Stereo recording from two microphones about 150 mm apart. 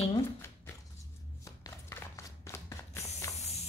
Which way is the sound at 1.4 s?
20° left (ahead or behind).